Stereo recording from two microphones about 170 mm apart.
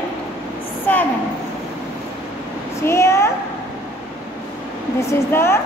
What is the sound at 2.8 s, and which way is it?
Speech, 15° left (ahead or behind).